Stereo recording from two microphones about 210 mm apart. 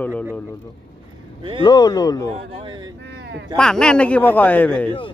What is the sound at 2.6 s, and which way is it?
Speech, 20° right (ahead or behind).